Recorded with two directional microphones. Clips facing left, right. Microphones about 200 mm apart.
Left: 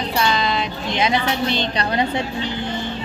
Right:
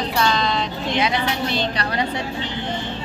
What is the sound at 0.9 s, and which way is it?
A woman's voice, 20° left (ahead or behind).